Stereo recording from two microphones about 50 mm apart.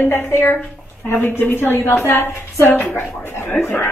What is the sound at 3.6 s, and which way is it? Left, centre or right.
Cutlery, left.